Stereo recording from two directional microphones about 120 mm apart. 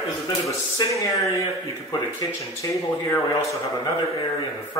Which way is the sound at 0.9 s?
25° left (ahead or behind).